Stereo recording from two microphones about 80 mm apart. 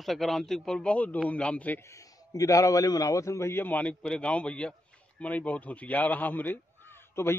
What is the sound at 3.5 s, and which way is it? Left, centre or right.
A man's voice, left.